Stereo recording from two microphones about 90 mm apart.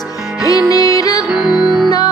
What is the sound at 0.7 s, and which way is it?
Music, 40° left (ahead or behind).